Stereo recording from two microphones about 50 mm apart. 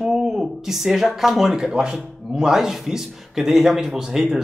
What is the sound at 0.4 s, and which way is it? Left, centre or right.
A man's voice, centre.